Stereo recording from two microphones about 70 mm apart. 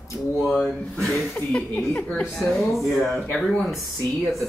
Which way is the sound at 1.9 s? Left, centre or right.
Centre.